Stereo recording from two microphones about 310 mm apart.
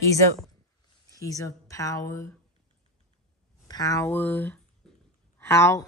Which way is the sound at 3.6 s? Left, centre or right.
Centre.